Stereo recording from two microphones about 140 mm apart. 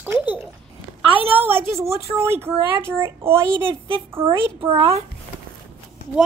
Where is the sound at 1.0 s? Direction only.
40° right (ahead or behind).